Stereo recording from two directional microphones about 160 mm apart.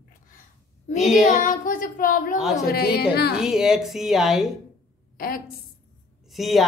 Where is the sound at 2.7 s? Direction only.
75° left (ahead or behind).